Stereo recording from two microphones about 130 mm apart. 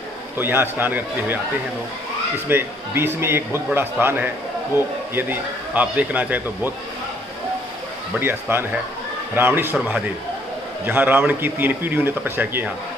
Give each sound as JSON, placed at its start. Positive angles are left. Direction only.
{"t": 0.4, "sound": "a man's voice", "side_deg": -15}
{"t": 2.4, "sound": "a man's voice", "side_deg": -15}
{"t": 8.2, "sound": "a man's voice", "side_deg": -15}